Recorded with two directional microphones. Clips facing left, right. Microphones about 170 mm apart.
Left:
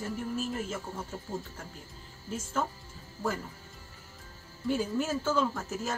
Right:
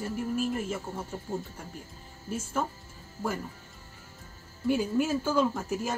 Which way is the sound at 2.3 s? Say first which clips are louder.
Right 1 dB; 10° right (ahead or behind).